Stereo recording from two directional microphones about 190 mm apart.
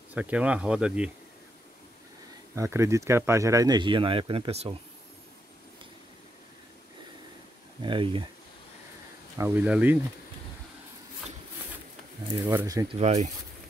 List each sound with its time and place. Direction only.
0.1 s speech: 5° right (ahead or behind)
2.5 s speech: 15° right (ahead or behind); by 4.7 s 30° right (ahead or behind)
7.8 s speech: 25° right (ahead or behind)
9.4 s speech: 10° right (ahead or behind)
12.4 s speech: 15° right (ahead or behind)
13.0 s speech: 35° right (ahead or behind)